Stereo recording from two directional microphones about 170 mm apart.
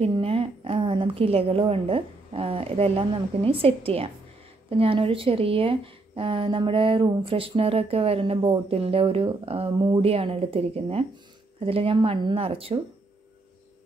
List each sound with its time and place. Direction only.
0.0 s speech: 35° right (ahead or behind)